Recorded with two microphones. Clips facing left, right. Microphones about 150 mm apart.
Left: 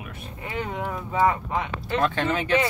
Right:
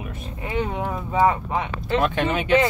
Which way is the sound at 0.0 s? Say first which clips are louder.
Right 4 dB; 20° right (ahead or behind).